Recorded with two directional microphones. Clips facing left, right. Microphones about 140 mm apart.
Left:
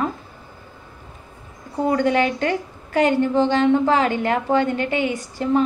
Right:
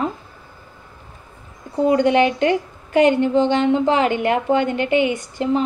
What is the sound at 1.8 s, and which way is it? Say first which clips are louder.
A woman's voice: right 3 dB; 20° right (ahead or behind).